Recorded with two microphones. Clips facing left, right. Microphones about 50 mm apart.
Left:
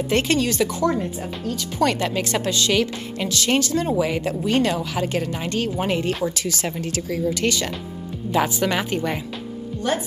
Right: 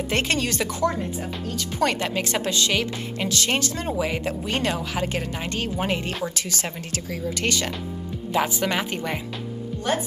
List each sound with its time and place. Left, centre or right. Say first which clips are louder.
0.1 s speech: left 4 dB; right
1.8 s speech: left 2 dB; right
5.8 s speech: left 3 dB; centre
6.3 s speech: left 4 dB; right
8.3 s speech: left 3 dB; centre